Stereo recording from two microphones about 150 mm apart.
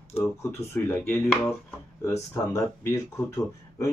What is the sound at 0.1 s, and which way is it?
Speech, 15° left (ahead or behind).